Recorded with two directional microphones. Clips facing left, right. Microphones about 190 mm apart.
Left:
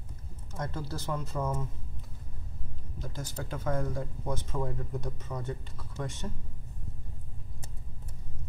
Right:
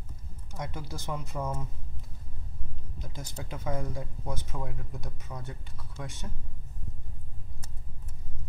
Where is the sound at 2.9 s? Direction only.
15° right (ahead or behind).